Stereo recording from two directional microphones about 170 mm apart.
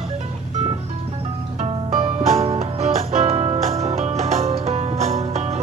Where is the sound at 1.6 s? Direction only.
40° right (ahead or behind).